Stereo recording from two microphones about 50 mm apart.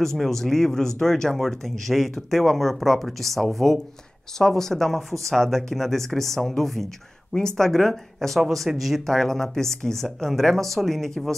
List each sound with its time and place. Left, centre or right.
0.0 s speech: centre